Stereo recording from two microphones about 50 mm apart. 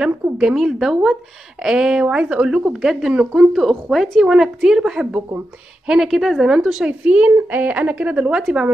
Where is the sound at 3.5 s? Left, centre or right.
Centre.